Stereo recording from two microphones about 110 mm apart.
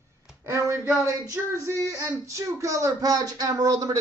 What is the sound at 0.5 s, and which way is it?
Speech, 25° right (ahead or behind).